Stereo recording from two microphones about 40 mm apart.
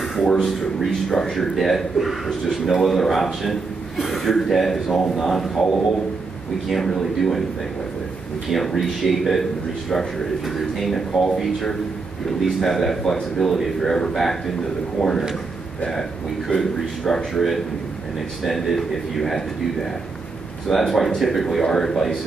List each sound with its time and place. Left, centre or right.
0.4 s a man's voice: centre
6.8 s a man's voice: centre
8.5 s a man's voice: centre